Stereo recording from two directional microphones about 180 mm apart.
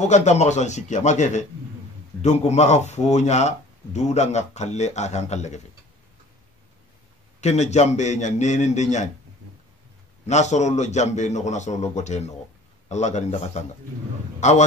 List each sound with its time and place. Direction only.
0.0 s speech: 40° left (ahead or behind)
7.3 s speech: 40° left (ahead or behind)
10.2 s speech: 40° left (ahead or behind)